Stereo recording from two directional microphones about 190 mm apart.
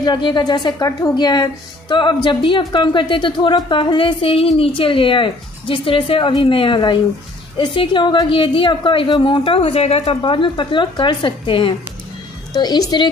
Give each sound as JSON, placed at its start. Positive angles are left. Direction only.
{"t": 0.0, "sound": "a woman's voice", "side_deg": 20}